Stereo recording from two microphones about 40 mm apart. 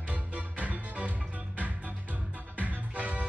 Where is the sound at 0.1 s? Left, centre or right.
Right.